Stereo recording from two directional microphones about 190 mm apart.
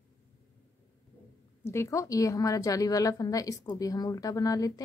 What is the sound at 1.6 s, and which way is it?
A woman's voice, 15° left (ahead or behind).